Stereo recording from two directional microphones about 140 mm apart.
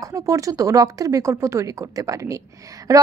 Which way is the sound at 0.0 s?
25° right (ahead or behind).